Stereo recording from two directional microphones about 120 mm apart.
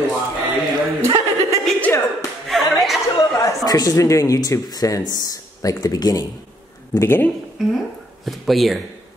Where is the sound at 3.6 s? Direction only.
30° left (ahead or behind).